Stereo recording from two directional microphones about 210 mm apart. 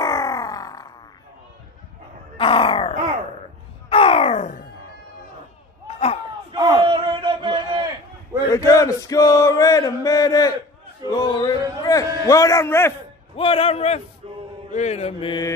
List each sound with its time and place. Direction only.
0.0 s grunt: 15° left (ahead or behind)
2.3 s grunt: 25° left (ahead or behind)
3.9 s a sound: 25° left (ahead or behind)
5.9 s a sound: 30° left (ahead or behind)
6.5 s a sound: 20° right (ahead or behind)
8.5 s male singing: 15° left (ahead or behind)
13.4 s male singing: 25° left (ahead or behind)
14.2 s male singing: 30° right (ahead or behind)
14.7 s male singing: 30° left (ahead or behind)